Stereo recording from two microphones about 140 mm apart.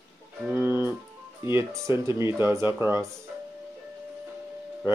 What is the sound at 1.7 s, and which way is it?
Speech, 20° right (ahead or behind).